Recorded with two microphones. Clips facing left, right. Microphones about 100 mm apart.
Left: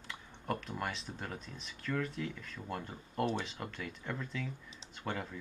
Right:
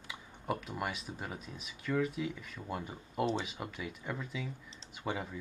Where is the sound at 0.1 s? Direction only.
5° right (ahead or behind).